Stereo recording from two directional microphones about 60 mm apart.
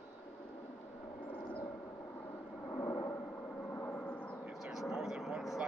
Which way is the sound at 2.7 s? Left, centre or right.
Left.